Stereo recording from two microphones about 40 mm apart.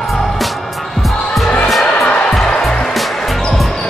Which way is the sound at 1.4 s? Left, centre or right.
Left.